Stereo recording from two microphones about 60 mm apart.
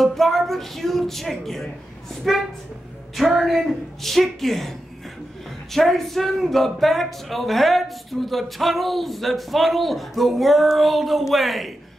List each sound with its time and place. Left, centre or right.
0.0 s speech: centre
3.2 s speech: centre